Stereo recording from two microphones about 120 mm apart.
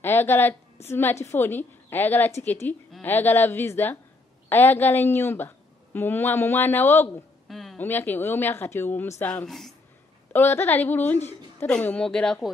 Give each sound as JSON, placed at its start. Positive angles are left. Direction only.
{"t": 0.0, "sound": "a woman's voice", "side_deg": 20}
{"t": 7.4, "sound": "a sound", "side_deg": 0}
{"t": 7.7, "sound": "a woman's voice", "side_deg": 15}
{"t": 10.3, "sound": "a woman's voice", "side_deg": 15}